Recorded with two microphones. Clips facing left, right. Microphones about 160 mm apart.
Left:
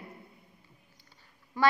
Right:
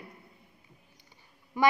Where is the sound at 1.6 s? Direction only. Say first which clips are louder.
Right 1 dB; 15° right (ahead or behind).